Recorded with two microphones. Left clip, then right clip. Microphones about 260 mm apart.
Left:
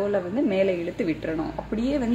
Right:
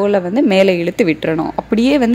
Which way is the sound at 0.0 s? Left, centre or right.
Right.